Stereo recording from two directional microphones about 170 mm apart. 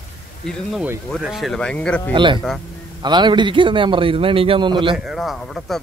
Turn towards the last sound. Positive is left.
turn(degrees=0)  # may be behind; listen again after turning